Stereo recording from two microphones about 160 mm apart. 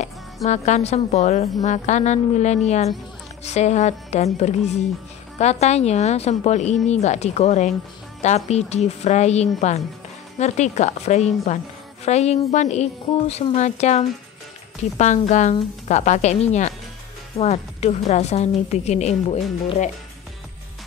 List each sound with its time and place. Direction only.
0.5 s a woman's voice: 45° left (ahead or behind)